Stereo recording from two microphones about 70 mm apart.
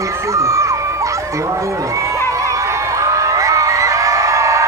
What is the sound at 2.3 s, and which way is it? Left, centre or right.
Crowd, right.